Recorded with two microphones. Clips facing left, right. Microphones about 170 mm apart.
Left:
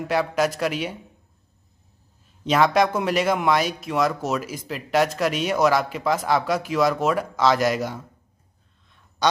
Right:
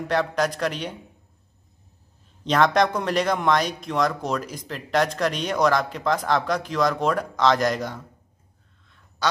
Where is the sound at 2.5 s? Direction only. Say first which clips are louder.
Left 1 dB; 5° left (ahead or behind).